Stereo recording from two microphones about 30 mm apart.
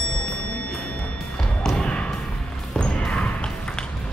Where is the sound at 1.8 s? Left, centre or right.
Left.